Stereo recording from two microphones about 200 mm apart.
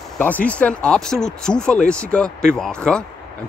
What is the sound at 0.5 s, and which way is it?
Speech, 5° left (ahead or behind).